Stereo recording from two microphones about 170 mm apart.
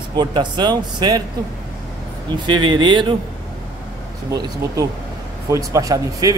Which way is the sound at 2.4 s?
25° right (ahead or behind).